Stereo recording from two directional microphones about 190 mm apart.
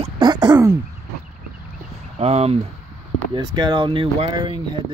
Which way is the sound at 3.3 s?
20° right (ahead or behind).